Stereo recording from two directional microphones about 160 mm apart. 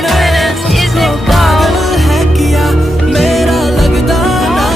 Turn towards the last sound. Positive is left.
turn(degrees=0)  # may be behind; listen again after turning